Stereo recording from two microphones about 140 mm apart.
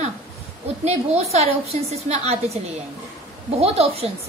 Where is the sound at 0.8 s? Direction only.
50° right (ahead or behind).